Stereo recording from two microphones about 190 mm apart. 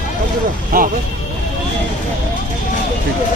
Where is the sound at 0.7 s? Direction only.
50° right (ahead or behind).